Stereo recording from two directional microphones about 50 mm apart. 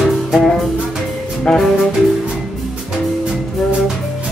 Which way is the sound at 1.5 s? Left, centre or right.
Centre.